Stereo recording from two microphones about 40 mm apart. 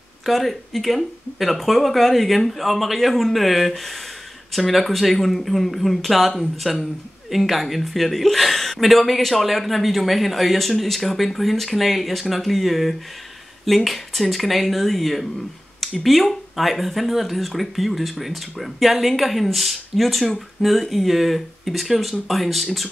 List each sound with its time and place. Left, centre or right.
0.2 s speech: centre